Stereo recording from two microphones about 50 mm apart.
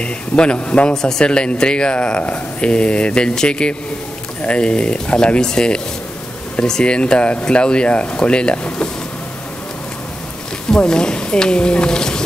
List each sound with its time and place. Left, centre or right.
0.0 s speech: left
10.7 s speech: centre